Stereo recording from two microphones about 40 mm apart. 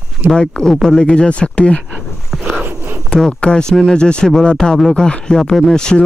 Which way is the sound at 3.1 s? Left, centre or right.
Centre.